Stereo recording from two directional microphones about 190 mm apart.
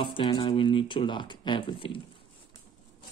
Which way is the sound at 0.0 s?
25° left (ahead or behind).